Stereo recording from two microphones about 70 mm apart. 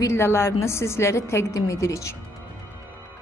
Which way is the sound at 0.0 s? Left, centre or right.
Left.